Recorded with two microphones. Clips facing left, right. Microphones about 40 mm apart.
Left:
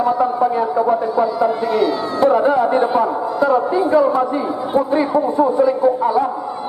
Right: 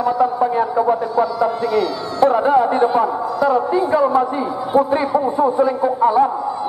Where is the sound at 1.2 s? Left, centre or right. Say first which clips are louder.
Left 1 dB; centre.